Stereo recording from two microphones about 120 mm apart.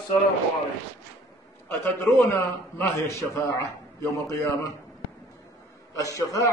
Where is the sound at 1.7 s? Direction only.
20° left (ahead or behind).